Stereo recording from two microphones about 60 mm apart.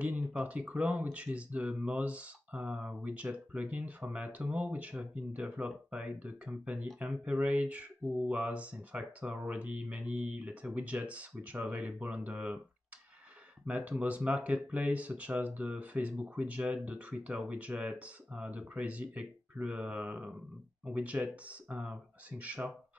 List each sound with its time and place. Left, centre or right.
0.4 s speech: right
13.7 s speech: right